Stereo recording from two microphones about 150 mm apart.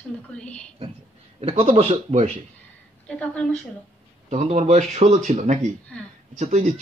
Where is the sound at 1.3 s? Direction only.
40° right (ahead or behind).